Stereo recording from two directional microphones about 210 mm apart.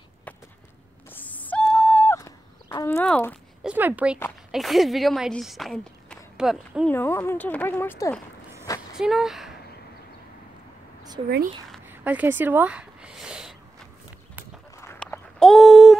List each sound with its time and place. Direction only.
1.1 s owl: 5° left (ahead or behind)
3.6 s a woman's voice: 10° right (ahead or behind)
6.9 s speech: 10° left (ahead or behind)
8.9 s speech: centre (ahead or behind)
11.2 s speech: 25° right (ahead or behind)
11.9 s a sound: 10° right (ahead or behind)
14.8 s a sound: 10° left (ahead or behind)